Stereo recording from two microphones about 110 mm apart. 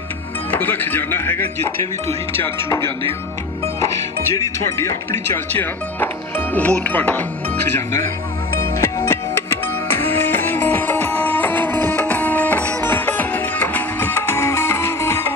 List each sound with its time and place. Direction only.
0.5 s speech: 20° left (ahead or behind)
4.7 s speech: 25° left (ahead or behind)
9.8 s music: 20° left (ahead or behind)